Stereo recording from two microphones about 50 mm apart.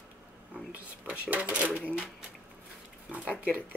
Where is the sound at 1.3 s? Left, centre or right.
Right.